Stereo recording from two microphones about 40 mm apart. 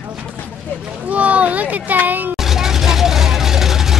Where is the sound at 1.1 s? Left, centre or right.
Right.